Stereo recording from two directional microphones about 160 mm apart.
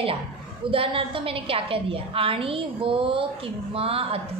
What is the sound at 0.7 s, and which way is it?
A woman's voice, 35° right (ahead or behind).